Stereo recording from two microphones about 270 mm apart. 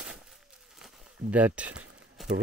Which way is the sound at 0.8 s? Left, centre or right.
Centre.